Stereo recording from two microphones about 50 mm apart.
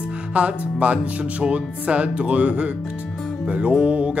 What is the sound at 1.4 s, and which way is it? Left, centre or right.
Speech, right.